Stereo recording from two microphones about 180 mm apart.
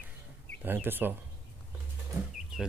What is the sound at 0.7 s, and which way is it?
Speech, 10° right (ahead or behind).